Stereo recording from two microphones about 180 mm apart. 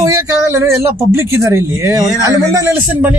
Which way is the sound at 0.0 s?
20° right (ahead or behind).